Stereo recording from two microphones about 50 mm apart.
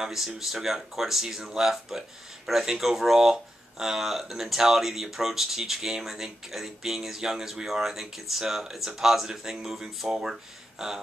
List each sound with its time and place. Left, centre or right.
0.0 s speech: centre